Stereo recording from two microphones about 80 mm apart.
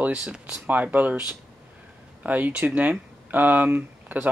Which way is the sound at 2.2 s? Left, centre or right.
Centre.